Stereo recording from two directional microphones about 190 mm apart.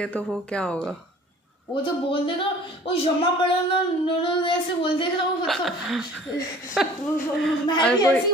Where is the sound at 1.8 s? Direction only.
25° left (ahead or behind).